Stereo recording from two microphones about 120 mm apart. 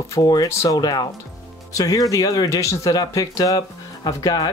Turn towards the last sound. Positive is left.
turn(degrees=35)  # may be behind; listen again after turning